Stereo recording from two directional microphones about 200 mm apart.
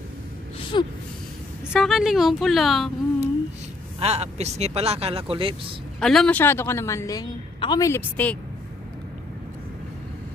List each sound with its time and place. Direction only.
0.7 s gasp: 25° left (ahead or behind)
1.7 s speech: centre (ahead or behind)
4.0 s speech: 30° right (ahead or behind)
5.9 s a woman's voice: 5° left (ahead or behind)